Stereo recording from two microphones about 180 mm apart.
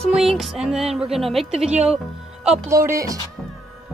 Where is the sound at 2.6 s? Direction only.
15° right (ahead or behind).